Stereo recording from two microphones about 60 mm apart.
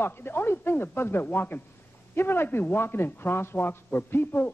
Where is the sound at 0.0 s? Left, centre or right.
Left.